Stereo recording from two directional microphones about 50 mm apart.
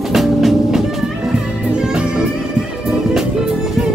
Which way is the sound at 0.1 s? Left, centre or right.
Centre.